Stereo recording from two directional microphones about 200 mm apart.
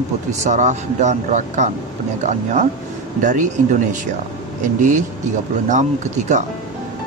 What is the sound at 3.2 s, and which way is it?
Speech, 40° right (ahead or behind).